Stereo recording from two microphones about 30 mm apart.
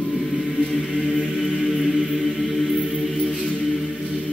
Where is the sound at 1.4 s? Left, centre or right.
Centre.